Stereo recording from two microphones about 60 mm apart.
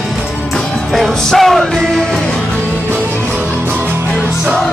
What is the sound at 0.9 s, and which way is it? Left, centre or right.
Music, centre.